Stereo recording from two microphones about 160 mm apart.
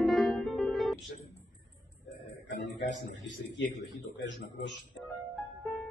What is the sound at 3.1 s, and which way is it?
Speech, 90° left.